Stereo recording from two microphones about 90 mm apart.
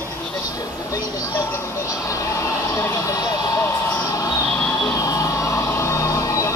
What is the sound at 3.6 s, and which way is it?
Vehicle, 25° left (ahead or behind).